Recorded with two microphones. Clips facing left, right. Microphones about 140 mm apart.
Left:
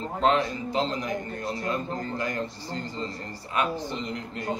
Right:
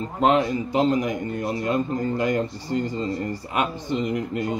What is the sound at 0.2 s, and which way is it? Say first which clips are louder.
A man's voice: right 4 dB; 15° right (ahead or behind).